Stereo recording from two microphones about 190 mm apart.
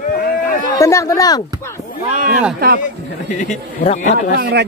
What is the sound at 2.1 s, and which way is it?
Speech, 45° right (ahead or behind).